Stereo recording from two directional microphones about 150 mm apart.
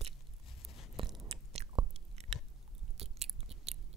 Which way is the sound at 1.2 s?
45° right (ahead or behind).